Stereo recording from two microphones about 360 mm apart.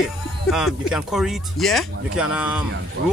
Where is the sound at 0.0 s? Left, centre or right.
Centre.